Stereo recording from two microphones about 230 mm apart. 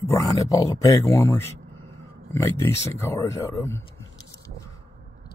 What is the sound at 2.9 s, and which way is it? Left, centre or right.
Speech, centre.